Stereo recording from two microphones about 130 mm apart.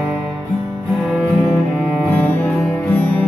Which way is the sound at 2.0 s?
15° left (ahead or behind).